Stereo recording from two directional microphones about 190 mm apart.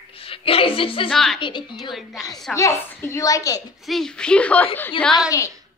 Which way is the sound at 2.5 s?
15° left (ahead or behind).